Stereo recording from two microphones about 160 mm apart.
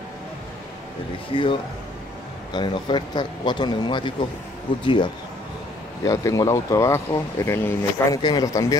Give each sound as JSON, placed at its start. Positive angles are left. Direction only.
{"t": 1.3, "sound": "speech", "side_deg": 30}
{"t": 6.0, "sound": "speech", "side_deg": 20}
{"t": 8.2, "sound": "speech", "side_deg": 25}